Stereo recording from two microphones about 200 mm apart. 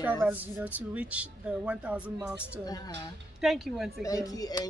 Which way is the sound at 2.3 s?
20° left (ahead or behind).